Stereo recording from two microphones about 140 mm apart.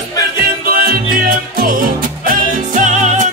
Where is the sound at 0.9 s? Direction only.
90° right.